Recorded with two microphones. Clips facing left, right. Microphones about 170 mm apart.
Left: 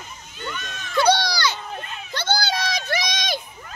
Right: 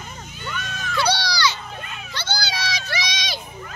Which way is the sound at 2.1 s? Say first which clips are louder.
Left 5 dB; 55° left (ahead or behind).